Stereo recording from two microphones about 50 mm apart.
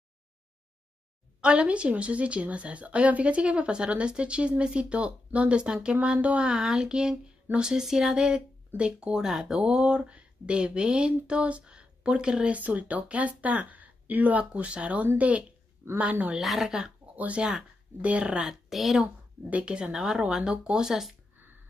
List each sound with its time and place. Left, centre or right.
1.4 s a woman's voice: right
5.9 s a woman's voice: right
6.4 s speech: centre
9.2 s a woman's voice: centre
12.5 s a woman's voice: right
16.3 s a woman's voice: centre
17.1 s speech: right
17.4 s speech: centre
18.0 s a woman's voice: right
18.4 s a woman's voice: centre
19.5 s speech: centre